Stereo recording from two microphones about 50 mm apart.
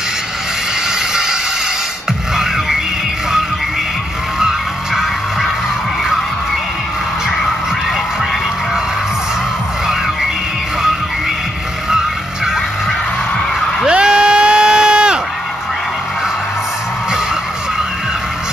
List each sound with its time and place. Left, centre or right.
4.4 s music: centre
13.8 s crowd: centre